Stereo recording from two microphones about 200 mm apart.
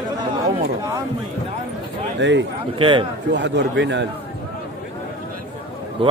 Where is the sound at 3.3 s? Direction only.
60° right (ahead or behind).